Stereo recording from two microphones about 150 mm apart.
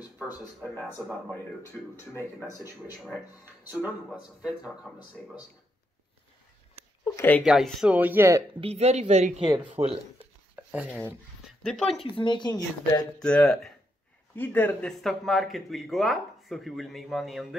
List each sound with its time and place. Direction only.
1.0 s speech: 15° left (ahead or behind)
3.7 s speech: 10° right (ahead or behind)
7.2 s speech: 10° left (ahead or behind)
7.4 s speech: 5° right (ahead or behind)
8.5 s speech: 40° right (ahead or behind)
10.5 s chopping: 10° right (ahead or behind)
11.6 s speech: 5° left (ahead or behind)
12.0 s a woman's voice: 35° left (ahead or behind)
13.2 s speech: 5° left (ahead or behind)